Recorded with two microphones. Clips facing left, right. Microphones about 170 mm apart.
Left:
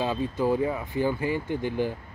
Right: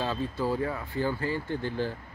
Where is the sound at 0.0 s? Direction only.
15° left (ahead or behind).